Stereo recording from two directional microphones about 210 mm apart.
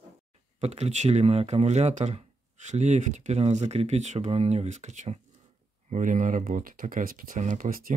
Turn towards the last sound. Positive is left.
turn(degrees=-40)  # may be behind; listen again after turning